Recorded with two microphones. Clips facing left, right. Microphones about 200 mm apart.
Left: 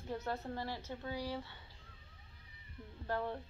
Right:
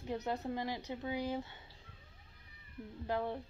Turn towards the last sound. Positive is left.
turn(degrees=-15)  # may be behind; listen again after turning